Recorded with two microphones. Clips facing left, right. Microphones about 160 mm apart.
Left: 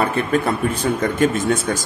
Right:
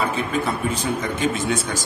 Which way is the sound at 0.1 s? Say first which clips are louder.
Left 4 dB; 55° left (ahead or behind).